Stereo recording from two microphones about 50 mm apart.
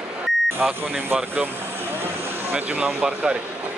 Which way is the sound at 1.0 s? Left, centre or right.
Right.